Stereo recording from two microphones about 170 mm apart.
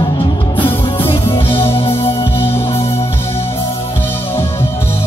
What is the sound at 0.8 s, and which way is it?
Music, 30° left (ahead or behind).